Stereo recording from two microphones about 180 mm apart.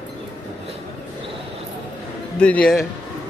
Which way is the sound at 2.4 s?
5° left (ahead or behind).